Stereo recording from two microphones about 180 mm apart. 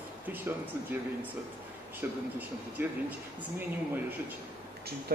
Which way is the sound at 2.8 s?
10° right (ahead or behind).